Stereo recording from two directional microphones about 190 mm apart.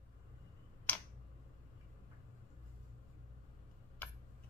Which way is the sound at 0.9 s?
10° left (ahead or behind).